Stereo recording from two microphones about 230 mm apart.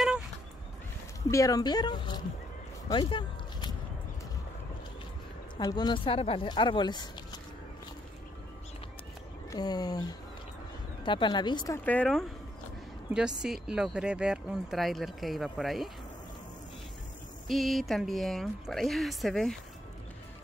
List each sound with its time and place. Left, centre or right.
1.3 s speech: centre
2.9 s a sound: left
5.6 s a woman's voice: centre
9.5 s speech: centre
11.1 s speech: centre
17.5 s speech: centre